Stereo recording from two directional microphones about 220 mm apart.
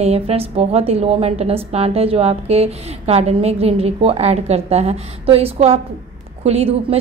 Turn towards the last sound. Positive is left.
turn(degrees=-30)  # may be behind; listen again after turning